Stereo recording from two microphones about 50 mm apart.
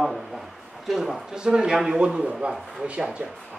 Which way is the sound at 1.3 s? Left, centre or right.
Centre.